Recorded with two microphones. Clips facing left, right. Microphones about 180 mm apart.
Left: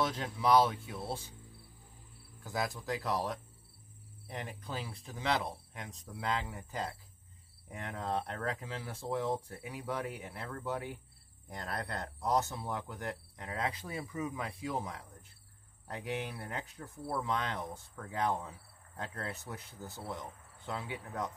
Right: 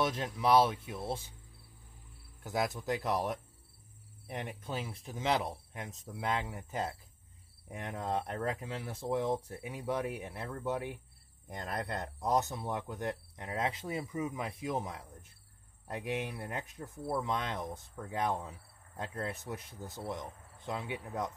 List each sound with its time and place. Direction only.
0.0 s speech: 20° right (ahead or behind)
2.4 s speech: 20° right (ahead or behind)